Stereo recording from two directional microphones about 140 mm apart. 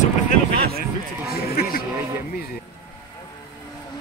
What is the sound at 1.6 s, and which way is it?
Music, 90° left.